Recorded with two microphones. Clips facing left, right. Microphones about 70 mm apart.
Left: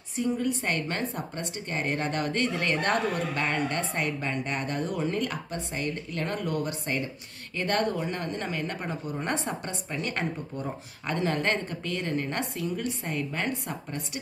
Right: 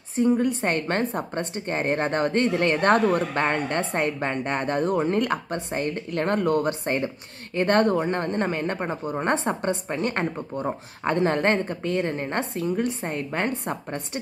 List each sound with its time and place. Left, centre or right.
0.1 s speech: right